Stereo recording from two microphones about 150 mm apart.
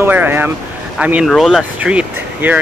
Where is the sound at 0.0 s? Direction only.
15° right (ahead or behind).